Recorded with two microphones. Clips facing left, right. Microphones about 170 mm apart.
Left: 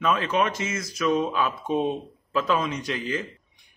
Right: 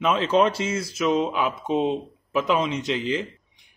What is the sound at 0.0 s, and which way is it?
Speech, 25° right (ahead or behind).